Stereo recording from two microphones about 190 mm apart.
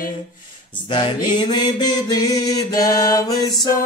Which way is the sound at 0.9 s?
25° left (ahead or behind).